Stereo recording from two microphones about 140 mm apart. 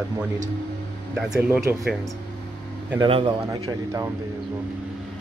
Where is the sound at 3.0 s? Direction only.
40° right (ahead or behind).